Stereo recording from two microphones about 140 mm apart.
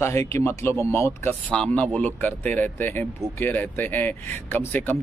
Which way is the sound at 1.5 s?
5° left (ahead or behind).